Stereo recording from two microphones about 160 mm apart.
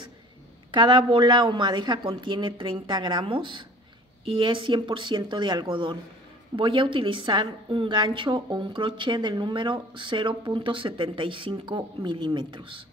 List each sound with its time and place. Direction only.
0.7 s a woman's voice: 30° right (ahead or behind)